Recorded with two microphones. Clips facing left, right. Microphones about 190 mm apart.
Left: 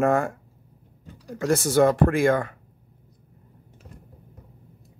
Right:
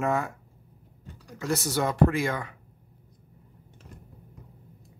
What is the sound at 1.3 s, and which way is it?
Speech, 50° left (ahead or behind).